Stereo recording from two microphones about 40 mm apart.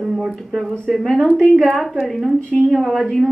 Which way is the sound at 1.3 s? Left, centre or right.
Centre.